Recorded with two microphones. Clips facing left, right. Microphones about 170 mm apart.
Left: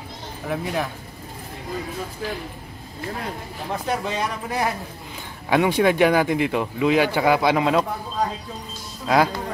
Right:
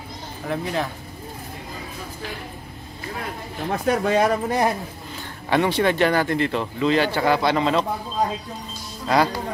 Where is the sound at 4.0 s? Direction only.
55° right (ahead or behind).